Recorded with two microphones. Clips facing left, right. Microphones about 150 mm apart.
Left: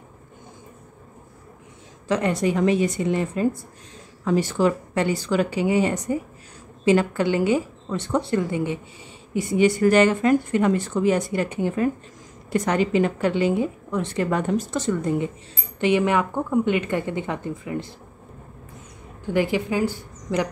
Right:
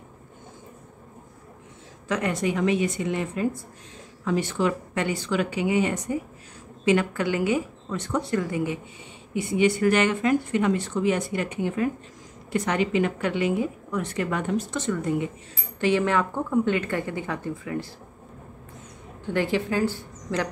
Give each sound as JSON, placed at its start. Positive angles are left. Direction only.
{"t": 2.0, "sound": "a woman's voice", "side_deg": 30}
{"t": 9.3, "sound": "a woman's voice", "side_deg": 40}
{"t": 15.8, "sound": "a woman's voice", "side_deg": 15}
{"t": 19.3, "sound": "a woman's voice", "side_deg": 10}